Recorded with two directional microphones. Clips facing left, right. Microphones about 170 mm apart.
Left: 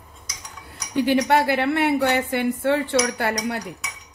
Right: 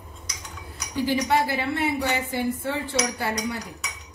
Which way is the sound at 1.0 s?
65° left (ahead or behind).